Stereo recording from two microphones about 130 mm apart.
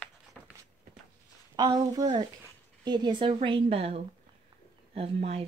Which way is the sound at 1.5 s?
30° right (ahead or behind).